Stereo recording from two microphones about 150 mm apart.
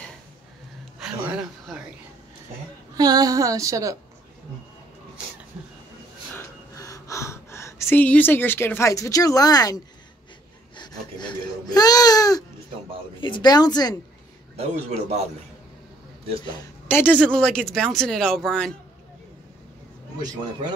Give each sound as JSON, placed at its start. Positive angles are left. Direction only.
{"t": 3.0, "sound": "female singing", "side_deg": -25}
{"t": 6.3, "sound": "gasp", "side_deg": 20}
{"t": 10.8, "sound": "baby cry", "side_deg": 30}
{"t": 13.2, "sound": "speech", "side_deg": 30}
{"t": 14.6, "sound": "a man's voice", "side_deg": -45}
{"t": 16.9, "sound": "a man's voice", "side_deg": 10}